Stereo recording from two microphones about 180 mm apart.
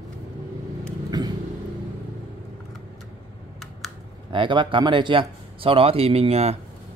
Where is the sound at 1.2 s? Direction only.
25° right (ahead or behind).